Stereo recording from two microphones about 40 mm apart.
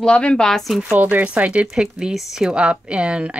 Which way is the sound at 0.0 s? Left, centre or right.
Left.